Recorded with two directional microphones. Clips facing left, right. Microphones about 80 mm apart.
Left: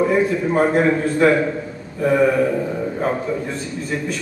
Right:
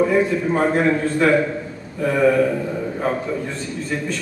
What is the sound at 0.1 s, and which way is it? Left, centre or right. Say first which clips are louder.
A man's voice: left 1 dB; centre.